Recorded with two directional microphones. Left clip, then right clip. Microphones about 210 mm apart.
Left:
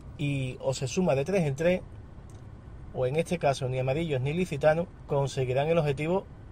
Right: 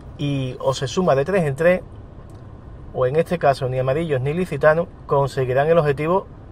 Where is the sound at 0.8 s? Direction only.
15° left (ahead or behind).